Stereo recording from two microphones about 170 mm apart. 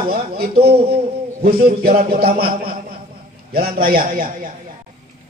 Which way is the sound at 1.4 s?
60° right (ahead or behind).